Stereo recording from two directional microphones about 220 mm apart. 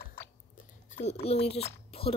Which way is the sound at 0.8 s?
30° left (ahead or behind).